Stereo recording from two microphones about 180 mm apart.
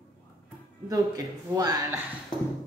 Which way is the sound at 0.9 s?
20° right (ahead or behind).